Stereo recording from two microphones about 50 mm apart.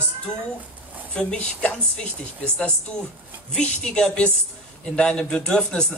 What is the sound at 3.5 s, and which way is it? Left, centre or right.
A man's voice, centre.